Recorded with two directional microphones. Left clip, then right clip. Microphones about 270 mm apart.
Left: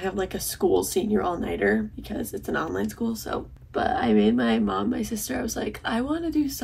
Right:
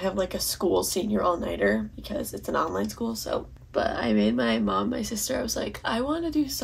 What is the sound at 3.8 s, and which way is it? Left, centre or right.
Speech, centre.